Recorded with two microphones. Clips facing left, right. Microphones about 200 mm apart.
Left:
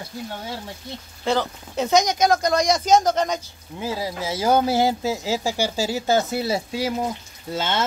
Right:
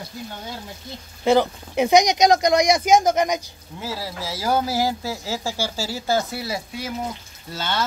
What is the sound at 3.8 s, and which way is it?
Speech, 15° left (ahead or behind).